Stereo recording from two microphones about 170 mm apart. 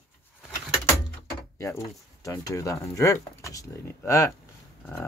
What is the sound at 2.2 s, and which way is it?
Speech, 20° left (ahead or behind).